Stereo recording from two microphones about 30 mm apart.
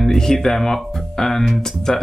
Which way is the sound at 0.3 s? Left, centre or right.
Centre.